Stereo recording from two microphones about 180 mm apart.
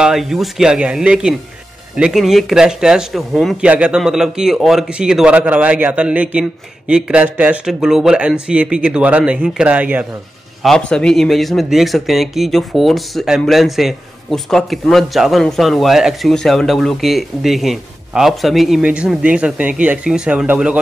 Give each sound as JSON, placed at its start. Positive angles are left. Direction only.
{"t": 0.0, "sound": "speech", "side_deg": 0}
{"t": 10.6, "sound": "speech", "side_deg": 5}